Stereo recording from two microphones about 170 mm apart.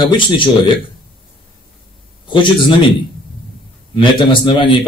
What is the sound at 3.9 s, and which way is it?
Speech, 30° left (ahead or behind).